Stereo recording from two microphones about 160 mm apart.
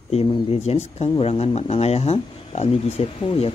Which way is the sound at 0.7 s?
40° left (ahead or behind).